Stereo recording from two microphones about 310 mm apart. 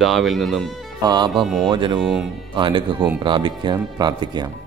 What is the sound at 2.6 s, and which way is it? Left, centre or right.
Speech, centre.